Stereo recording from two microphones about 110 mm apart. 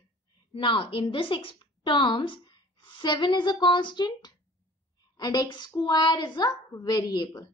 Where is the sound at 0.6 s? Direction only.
50° left (ahead or behind).